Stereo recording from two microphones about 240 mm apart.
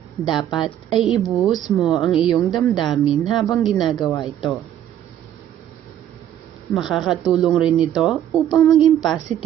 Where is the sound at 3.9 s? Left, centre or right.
Centre.